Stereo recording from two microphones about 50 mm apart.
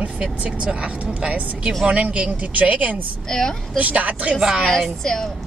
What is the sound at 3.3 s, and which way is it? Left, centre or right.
Speech, centre.